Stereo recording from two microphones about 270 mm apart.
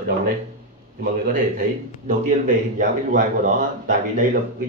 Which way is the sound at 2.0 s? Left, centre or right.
Right.